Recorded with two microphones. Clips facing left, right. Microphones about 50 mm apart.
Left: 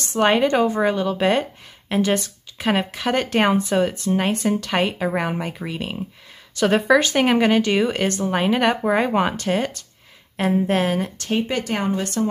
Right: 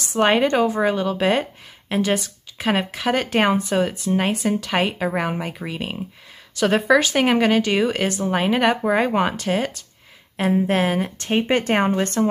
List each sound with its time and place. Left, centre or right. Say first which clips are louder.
0.0 s a woman's voice: even; centre
11.1 s speech: right 3 dB; right